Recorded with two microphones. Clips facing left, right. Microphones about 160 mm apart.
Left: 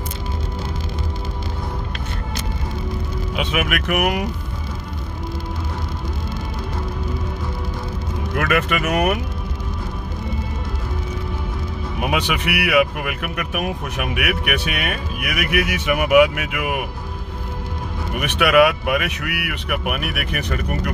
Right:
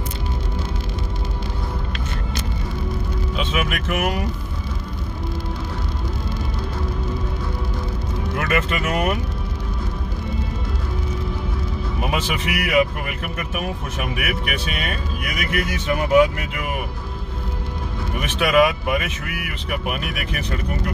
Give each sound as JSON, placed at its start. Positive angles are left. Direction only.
{"t": 3.5, "sound": "speech", "side_deg": 65}
{"t": 8.4, "sound": "speech", "side_deg": 65}
{"t": 12.1, "sound": "speech", "side_deg": 70}
{"t": 15.5, "sound": "speech", "side_deg": 85}
{"t": 16.1, "sound": "speech", "side_deg": 65}
{"t": 18.4, "sound": "speech", "side_deg": 70}